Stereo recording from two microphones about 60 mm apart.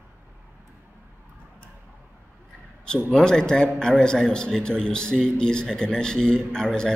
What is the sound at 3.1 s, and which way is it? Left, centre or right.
A man's voice, centre.